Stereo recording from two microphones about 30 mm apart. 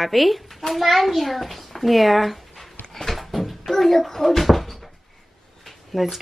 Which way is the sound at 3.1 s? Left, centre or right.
Centre.